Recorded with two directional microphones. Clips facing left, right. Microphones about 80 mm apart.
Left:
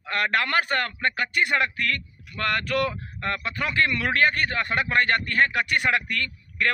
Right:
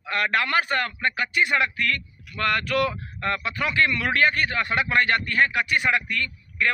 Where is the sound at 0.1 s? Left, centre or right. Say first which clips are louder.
Right 1 dB; left.